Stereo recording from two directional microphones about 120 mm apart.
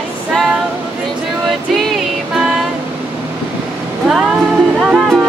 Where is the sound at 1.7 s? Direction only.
Centre (ahead or behind).